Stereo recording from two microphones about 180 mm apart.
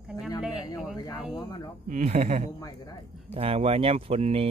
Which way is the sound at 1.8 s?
40° right (ahead or behind).